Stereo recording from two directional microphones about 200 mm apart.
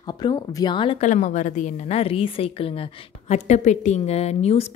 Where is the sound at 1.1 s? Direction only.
35° left (ahead or behind).